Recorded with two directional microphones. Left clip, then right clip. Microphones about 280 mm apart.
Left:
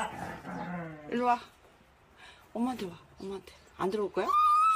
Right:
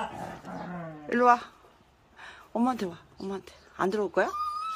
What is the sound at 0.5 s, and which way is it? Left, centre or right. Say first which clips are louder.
Dog: left 1 dB; right.